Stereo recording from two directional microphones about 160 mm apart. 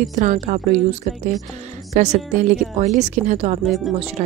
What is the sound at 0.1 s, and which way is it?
Speech, 50° right (ahead or behind).